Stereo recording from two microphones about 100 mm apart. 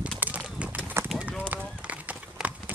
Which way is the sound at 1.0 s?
25° right (ahead or behind).